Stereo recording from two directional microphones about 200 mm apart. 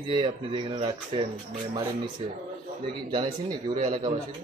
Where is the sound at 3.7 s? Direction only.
40° right (ahead or behind).